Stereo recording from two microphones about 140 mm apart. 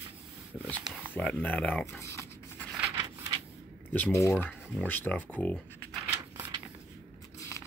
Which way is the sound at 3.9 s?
10° left (ahead or behind).